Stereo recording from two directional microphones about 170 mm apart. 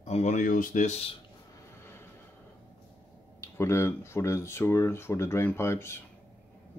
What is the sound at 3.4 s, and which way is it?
Speech, 15° left (ahead or behind).